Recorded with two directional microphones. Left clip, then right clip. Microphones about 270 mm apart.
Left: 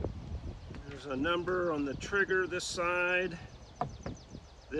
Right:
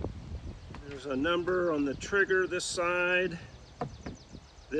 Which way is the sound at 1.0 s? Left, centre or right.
Centre.